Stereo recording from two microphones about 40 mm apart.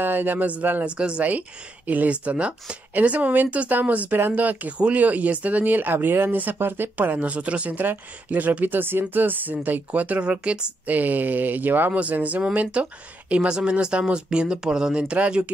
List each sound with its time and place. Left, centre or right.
0.0 s speech: right
0.8 s speech: right
1.9 s speech: right
2.9 s speech: right
7.0 s speech: right
7.7 s speech: right
8.3 s speech: right
9.1 s speech: right
10.2 s speech: right
11.0 s speech: right
11.9 s speech: right
12.7 s speech: right
15.0 s speech: right